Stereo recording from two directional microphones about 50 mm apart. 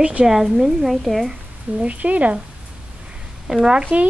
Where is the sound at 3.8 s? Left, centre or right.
Right.